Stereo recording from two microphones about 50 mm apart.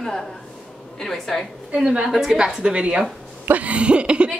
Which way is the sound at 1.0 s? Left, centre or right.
Centre.